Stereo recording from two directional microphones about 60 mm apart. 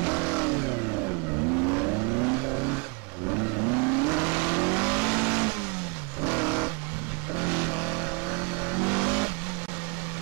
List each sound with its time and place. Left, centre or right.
0.0 s vehicle: right
1.7 s vehicle: right
8.7 s vehicle: right